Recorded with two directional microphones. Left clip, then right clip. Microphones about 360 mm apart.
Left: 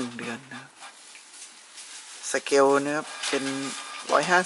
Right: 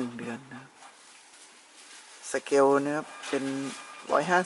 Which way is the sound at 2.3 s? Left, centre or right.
Centre.